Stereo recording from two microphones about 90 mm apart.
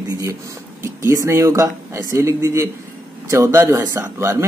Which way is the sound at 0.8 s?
35° right (ahead or behind).